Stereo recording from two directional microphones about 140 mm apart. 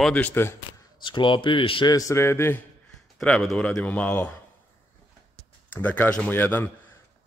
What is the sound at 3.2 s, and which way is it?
Speech, 5° left (ahead or behind).